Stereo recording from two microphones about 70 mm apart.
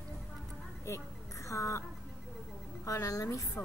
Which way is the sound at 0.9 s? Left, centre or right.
Left.